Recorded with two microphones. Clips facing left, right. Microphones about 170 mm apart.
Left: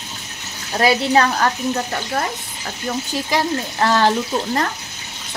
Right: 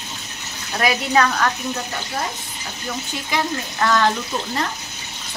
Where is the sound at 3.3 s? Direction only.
35° left (ahead or behind).